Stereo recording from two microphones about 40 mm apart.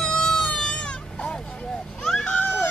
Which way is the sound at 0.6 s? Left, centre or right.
Left.